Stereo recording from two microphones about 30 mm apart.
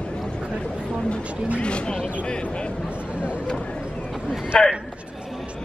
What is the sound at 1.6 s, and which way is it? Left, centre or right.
Speech, left.